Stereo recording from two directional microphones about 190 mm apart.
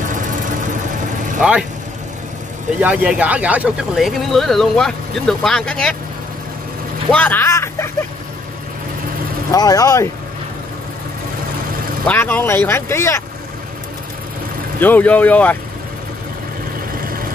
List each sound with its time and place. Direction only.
1.4 s speech: 5° right (ahead or behind)
2.8 s speech: 10° right (ahead or behind)
7.1 s speech: 10° left (ahead or behind)
9.5 s speech: 20° left (ahead or behind)
12.1 s speech: 10° left (ahead or behind)
14.8 s speech: 10° left (ahead or behind)